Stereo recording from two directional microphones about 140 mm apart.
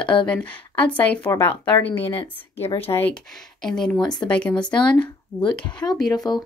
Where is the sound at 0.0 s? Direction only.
35° left (ahead or behind).